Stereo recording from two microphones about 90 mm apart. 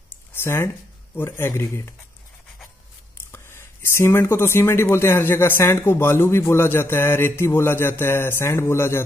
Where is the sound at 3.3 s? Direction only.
30° left (ahead or behind).